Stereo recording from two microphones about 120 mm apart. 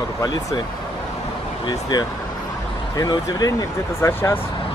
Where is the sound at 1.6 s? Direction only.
35° left (ahead or behind).